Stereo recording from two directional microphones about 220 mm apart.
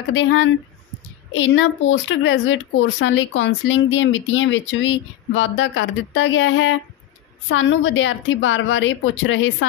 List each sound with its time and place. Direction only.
0.1 s speech: 60° left (ahead or behind)